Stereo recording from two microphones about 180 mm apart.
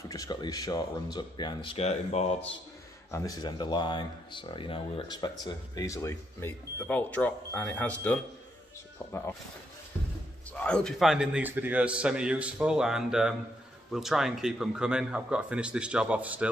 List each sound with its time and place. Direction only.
0.1 s speech: 20° left (ahead or behind)
3.1 s speech: 20° left (ahead or behind)
10.6 s a man's voice: 5° left (ahead or behind)